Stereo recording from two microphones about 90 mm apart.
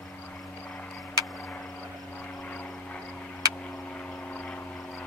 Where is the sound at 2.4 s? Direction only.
15° left (ahead or behind).